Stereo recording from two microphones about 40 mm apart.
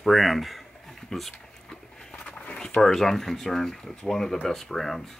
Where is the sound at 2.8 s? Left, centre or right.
Centre.